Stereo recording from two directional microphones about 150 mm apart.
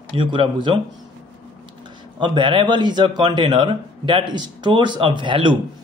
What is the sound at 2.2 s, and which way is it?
A man's voice, 30° right (ahead or behind).